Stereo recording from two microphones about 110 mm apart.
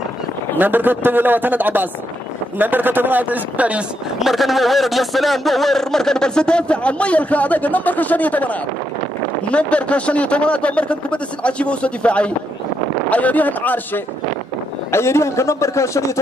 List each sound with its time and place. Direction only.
0.6 s a man's voice: 15° right (ahead or behind); by 16.0 s 25° left (ahead or behind)